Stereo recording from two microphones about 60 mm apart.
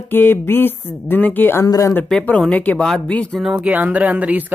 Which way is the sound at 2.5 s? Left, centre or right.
Left.